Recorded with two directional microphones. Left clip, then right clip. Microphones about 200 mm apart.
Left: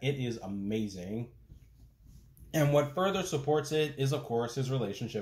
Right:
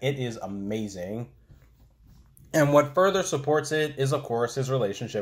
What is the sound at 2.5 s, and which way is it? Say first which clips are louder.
Speech: right 8 dB; 15° right (ahead or behind).